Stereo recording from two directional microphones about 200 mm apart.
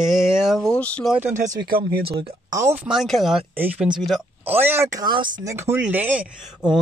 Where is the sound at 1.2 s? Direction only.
35° right (ahead or behind).